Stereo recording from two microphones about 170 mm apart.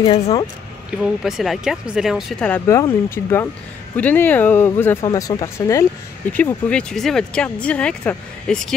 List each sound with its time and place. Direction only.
0.0 s speech: 25° left (ahead or behind)
1.0 s speech: centre (ahead or behind); by 5.9 s 20° left (ahead or behind)
6.3 s speech: 10° left (ahead or behind)